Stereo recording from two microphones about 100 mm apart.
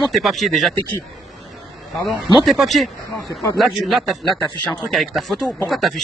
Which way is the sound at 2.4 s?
Centre (ahead or behind).